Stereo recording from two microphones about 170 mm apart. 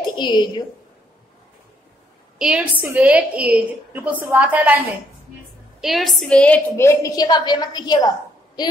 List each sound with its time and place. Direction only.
0.2 s a woman's voice: 25° left (ahead or behind)
2.3 s a woman's voice: 5° right (ahead or behind); by 8.1 s 25° left (ahead or behind)